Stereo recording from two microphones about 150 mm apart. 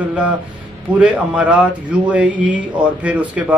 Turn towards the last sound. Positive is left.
turn(degrees=-10)  # may be behind; listen again after turning